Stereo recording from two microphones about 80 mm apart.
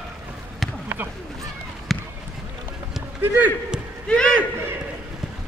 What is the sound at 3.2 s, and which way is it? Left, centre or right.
Speech, right.